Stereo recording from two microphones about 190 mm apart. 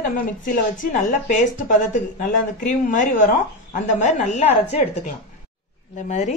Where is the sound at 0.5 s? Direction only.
45° left (ahead or behind).